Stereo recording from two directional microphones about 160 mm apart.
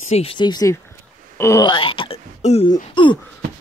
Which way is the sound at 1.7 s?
35° left (ahead or behind).